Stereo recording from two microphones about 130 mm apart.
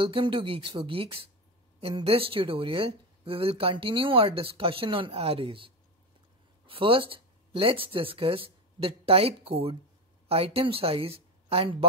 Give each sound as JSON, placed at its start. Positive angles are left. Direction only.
{"t": 0.0, "sound": "speech", "side_deg": -40}
{"t": 6.7, "sound": "a woman's voice", "side_deg": -45}